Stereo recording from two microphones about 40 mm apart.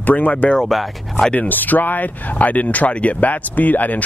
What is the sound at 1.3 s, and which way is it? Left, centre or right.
Speech, left.